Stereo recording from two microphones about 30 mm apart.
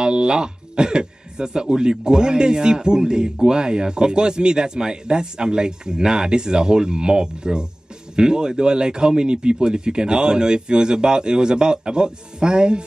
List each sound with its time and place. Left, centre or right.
0.0 s speech: right